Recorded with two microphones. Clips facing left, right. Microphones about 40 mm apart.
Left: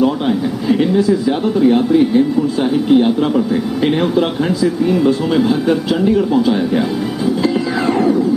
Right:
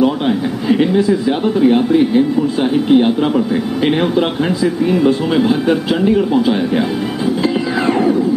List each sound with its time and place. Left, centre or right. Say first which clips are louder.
0.0 s speech: even; centre
7.4 s music: right 1 dB; centre